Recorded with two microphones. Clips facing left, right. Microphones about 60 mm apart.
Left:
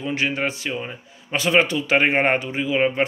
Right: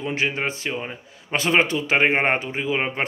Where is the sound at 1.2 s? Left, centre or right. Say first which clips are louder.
Left 1 dB; right.